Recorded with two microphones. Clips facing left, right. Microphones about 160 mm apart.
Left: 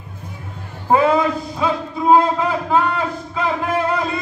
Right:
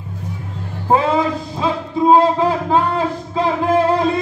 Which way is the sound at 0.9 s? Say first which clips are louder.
Left 1 dB; 30° right (ahead or behind).